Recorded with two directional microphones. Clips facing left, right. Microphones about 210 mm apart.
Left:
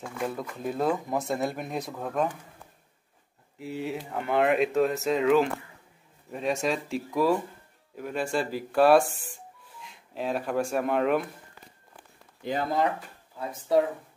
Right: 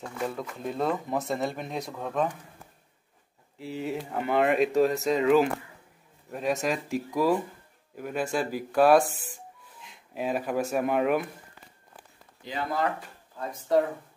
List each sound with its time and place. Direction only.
0.0 s speech: centre (ahead or behind)
3.6 s speech: centre (ahead or behind)
12.4 s speech: 55° left (ahead or behind)